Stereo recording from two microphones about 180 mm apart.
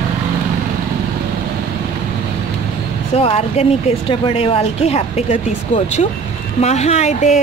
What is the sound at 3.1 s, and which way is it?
Speech, 35° left (ahead or behind).